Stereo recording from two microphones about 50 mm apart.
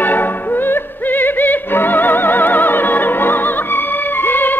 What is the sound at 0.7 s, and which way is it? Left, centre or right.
Music, left.